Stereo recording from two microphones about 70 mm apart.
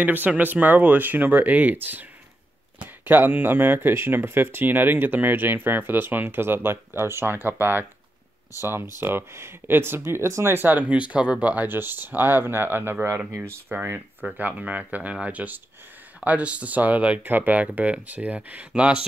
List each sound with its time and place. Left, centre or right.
0.0 s speech: right
3.1 s speech: right